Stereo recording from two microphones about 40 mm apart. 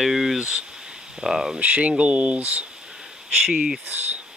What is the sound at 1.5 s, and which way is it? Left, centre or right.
Speech, right.